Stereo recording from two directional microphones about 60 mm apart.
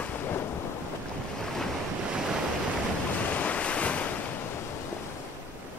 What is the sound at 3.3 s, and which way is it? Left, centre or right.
Waves, left.